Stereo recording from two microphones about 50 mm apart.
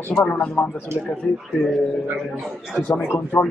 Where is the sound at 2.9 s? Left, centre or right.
Left.